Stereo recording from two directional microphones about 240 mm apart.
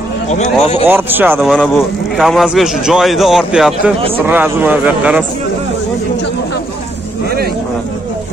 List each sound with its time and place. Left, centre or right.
0.3 s a man's voice: left
0.8 s speech: centre